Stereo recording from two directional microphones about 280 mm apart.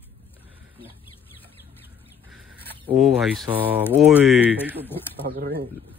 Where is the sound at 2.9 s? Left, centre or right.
Centre.